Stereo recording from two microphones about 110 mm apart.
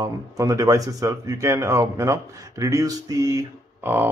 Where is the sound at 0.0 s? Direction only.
30° right (ahead or behind).